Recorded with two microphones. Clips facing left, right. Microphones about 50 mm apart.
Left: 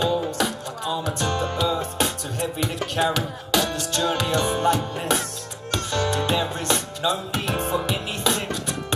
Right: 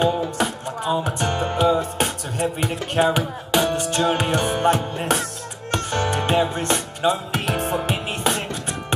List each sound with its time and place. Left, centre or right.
0.0 s music: right
7.4 s music: right